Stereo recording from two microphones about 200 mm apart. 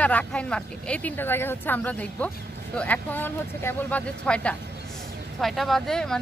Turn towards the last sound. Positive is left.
turn(degrees=5)  # may be behind; listen again after turning